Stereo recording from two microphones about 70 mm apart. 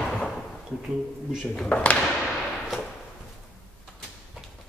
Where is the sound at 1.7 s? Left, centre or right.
Centre.